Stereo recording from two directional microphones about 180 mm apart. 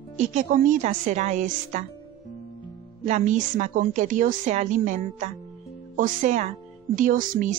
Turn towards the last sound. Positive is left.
turn(degrees=-50)  # may be behind; listen again after turning